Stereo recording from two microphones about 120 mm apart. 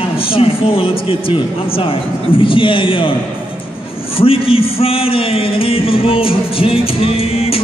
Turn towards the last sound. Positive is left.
turn(degrees=55)  # may be behind; listen again after turning